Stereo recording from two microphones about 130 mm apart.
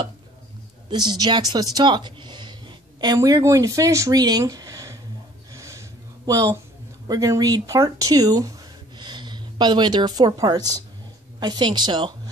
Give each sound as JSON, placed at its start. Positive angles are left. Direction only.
{"t": 0.8, "sound": "speech", "side_deg": -35}
{"t": 5.5, "sound": "a sound", "side_deg": -25}
{"t": 7.1, "sound": "speech", "side_deg": -30}